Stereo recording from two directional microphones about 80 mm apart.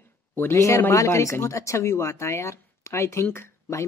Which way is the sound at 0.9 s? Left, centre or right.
Left.